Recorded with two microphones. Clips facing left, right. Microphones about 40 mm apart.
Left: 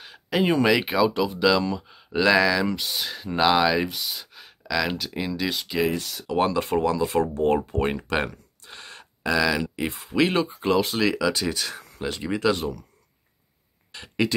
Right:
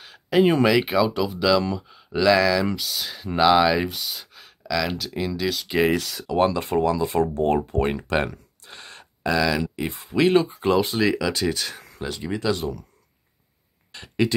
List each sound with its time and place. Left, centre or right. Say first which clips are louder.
0.0 s a sound: right 5 dB; centre
0.7 s speech: right 1 dB; centre
3.1 s speech: right 3 dB; centre
5.7 s speech: right 4 dB; right
6.3 s speech: right 2 dB; centre
13.9 s speech: right 2 dB; centre